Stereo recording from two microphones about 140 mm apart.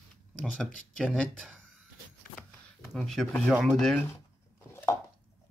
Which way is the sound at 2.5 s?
15° left (ahead or behind).